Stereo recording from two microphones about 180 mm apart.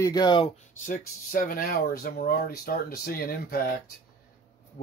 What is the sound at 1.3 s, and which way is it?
Speech, 55° left (ahead or behind).